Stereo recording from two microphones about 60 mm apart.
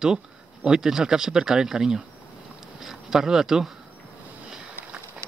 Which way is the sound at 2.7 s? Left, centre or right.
Centre.